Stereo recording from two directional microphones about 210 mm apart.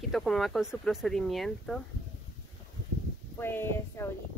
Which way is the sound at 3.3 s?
10° left (ahead or behind).